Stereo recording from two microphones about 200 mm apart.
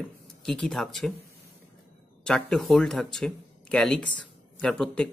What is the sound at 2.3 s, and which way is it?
Speech, 5° left (ahead or behind).